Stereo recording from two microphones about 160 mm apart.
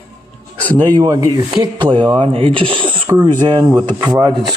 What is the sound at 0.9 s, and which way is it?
Speech, 25° right (ahead or behind).